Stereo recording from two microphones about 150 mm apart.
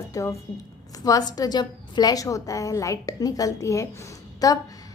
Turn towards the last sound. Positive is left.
turn(degrees=25)  # may be behind; listen again after turning